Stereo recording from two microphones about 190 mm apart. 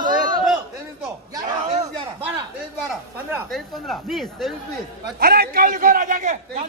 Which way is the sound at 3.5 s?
Centre (ahead or behind).